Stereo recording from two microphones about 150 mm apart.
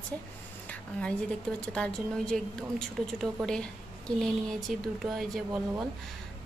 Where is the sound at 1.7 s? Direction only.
5° left (ahead or behind).